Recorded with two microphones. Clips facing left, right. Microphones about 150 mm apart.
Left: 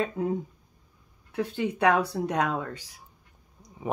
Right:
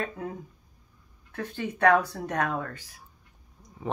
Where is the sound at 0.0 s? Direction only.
25° left (ahead or behind).